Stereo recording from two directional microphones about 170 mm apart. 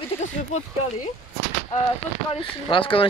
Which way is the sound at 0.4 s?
45° left (ahead or behind).